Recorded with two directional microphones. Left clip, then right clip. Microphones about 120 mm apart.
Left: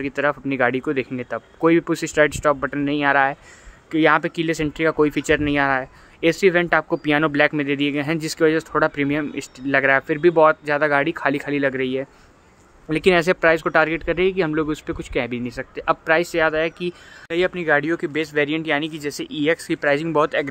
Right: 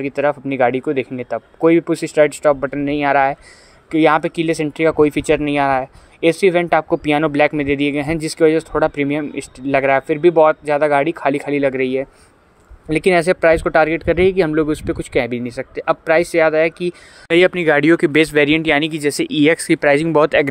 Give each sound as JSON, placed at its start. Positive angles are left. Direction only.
{"t": 0.0, "sound": "speech", "side_deg": -15}
{"t": 17.3, "sound": "speech", "side_deg": -85}